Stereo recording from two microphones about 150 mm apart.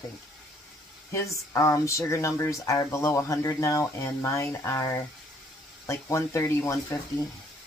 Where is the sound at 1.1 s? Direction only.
20° left (ahead or behind).